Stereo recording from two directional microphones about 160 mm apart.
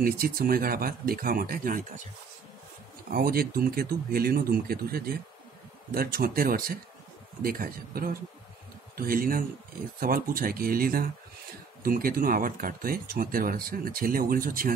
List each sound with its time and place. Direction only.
0.0 s speech: 65° right (ahead or behind)
3.1 s speech: 70° right (ahead or behind)